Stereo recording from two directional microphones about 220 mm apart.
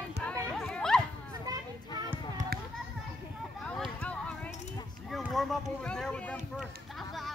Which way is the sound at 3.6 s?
5° left (ahead or behind).